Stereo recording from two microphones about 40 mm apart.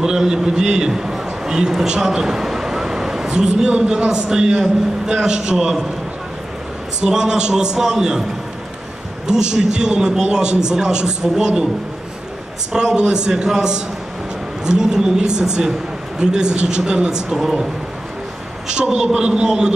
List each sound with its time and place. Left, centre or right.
0.0 s a man's voice: centre
1.1 s a sound: centre
3.3 s a man's voice: right
7.0 s a man's voice: centre
9.3 s a man's voice: right
12.7 s a man's voice: centre
17.4 s a man's voice: centre
18.8 s a man's voice: right